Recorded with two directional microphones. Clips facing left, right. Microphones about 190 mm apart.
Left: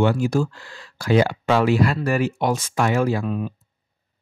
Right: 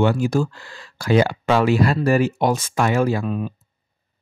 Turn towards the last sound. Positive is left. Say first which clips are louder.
# right 1 dB
turn(degrees=-30)  # may be behind; listen again after turning